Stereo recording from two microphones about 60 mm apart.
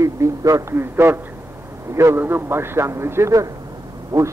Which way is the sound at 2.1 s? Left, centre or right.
Right.